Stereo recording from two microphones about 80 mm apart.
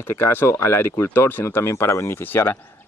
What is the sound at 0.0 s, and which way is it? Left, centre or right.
Speech, left.